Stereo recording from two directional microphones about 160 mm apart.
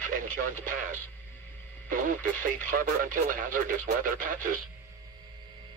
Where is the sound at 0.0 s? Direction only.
60° right (ahead or behind).